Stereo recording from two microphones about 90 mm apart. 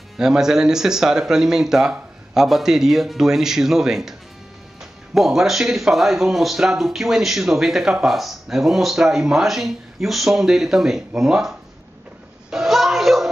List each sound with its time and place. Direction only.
0.2 s speech: 5° right (ahead or behind)
5.1 s speech: 5° right (ahead or behind)
12.4 s a sound: 5° right (ahead or behind)